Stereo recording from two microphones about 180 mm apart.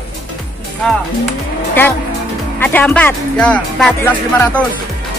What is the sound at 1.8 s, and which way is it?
Speech, 10° left (ahead or behind).